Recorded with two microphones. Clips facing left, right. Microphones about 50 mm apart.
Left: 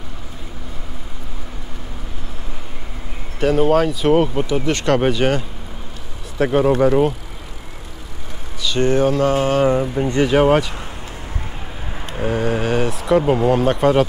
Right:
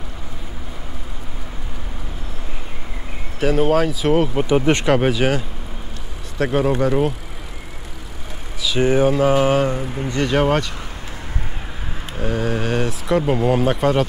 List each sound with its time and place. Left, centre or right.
3.3 s speech: centre
4.5 s speech: right
4.8 s speech: centre
8.6 s a sound: centre
9.7 s speech: centre
10.1 s speech: centre
12.1 s mantra: centre
13.3 s speech: centre